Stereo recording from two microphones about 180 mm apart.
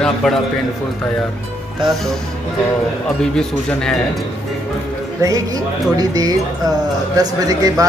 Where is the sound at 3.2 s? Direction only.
5° left (ahead or behind).